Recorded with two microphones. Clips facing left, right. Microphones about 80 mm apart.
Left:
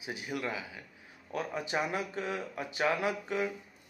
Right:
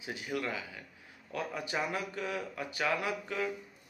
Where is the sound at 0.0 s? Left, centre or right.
Centre.